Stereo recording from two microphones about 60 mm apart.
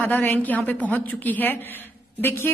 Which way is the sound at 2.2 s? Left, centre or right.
Left.